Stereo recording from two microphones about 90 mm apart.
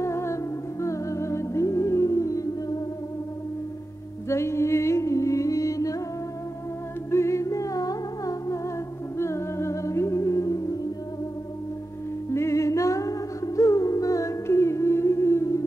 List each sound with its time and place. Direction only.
0.0 s music: 30° left (ahead or behind)
4.3 s music: 30° left (ahead or behind)
7.1 s humming: 30° left (ahead or behind)
9.2 s music: 30° left (ahead or behind)
12.3 s music: 30° left (ahead or behind)
13.6 s humming: 40° left (ahead or behind)